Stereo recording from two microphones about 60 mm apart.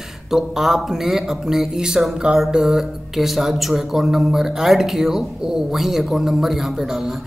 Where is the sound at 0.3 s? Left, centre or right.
Centre.